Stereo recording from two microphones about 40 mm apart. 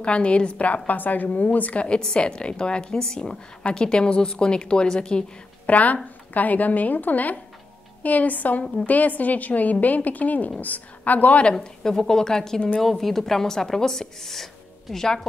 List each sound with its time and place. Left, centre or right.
0.0 s a woman's voice: left
0.8 s a woman's voice: left
1.9 s a woman's voice: left
5.7 s a woman's voice: left
11.6 s a woman's voice: centre